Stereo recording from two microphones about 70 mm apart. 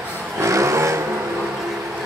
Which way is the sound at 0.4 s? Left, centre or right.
Right.